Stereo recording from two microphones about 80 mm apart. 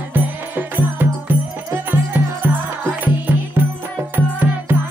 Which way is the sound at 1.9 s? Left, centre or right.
Right.